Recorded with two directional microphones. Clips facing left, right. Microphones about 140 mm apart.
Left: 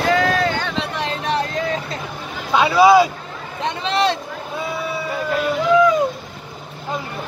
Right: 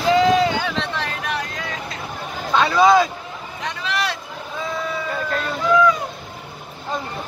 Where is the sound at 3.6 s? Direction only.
25° left (ahead or behind).